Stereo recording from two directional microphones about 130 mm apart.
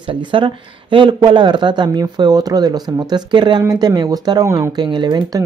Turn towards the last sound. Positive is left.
turn(degrees=-30)  # may be behind; listen again after turning